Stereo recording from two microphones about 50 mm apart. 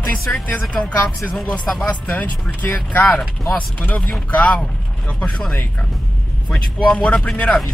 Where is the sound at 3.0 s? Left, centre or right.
Centre.